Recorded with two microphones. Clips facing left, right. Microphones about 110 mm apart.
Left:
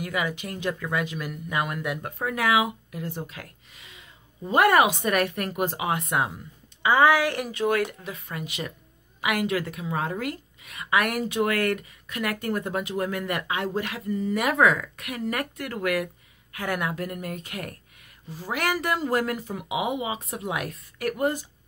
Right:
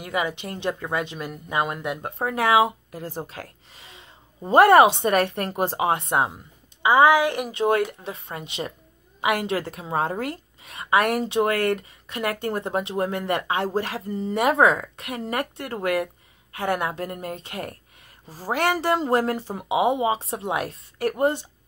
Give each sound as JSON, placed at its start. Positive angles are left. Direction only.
{"t": 0.0, "sound": "speech", "side_deg": -25}